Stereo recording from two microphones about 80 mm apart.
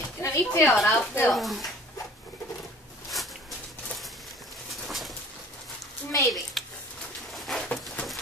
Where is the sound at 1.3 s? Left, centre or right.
Centre.